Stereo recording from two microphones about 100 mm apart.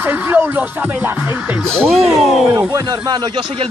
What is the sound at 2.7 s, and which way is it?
Speech, 40° right (ahead or behind).